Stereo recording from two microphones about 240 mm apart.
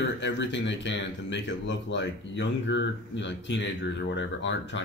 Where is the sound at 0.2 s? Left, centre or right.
Left.